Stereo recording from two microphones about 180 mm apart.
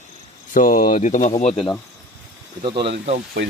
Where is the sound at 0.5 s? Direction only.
50° left (ahead or behind).